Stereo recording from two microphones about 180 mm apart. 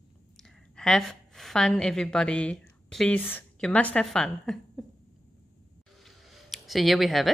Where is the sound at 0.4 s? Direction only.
5° left (ahead or behind).